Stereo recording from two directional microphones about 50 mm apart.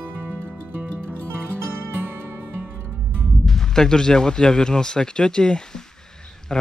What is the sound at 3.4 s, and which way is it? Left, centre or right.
Speech, centre.